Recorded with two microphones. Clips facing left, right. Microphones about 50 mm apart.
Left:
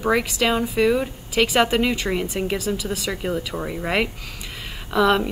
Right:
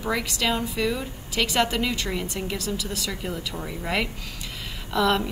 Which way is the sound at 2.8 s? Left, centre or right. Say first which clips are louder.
Left 4 dB; centre.